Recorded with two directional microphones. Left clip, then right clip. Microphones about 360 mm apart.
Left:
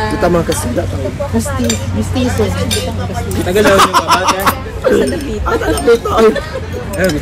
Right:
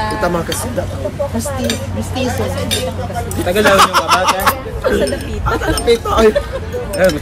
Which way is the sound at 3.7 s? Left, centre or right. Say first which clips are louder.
Left 1 dB; centre.